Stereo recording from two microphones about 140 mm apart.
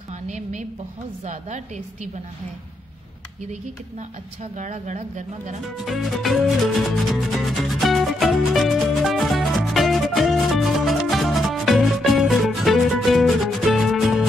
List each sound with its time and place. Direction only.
0.3 s a sound: 60° right (ahead or behind)
1.2 s a woman's voice: 60° right (ahead or behind)
4.6 s a woman's voice: 55° right (ahead or behind)
5.9 s music: centre (ahead or behind)